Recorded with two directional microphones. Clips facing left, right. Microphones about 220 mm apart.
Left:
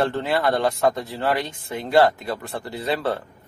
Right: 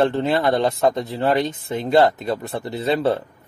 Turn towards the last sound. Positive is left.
turn(degrees=-20)  # may be behind; listen again after turning